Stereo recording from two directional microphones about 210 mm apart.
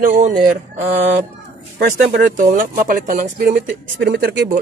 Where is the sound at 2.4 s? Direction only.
40° right (ahead or behind).